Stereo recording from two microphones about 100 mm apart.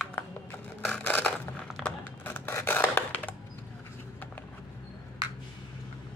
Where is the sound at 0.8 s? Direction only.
15° left (ahead or behind).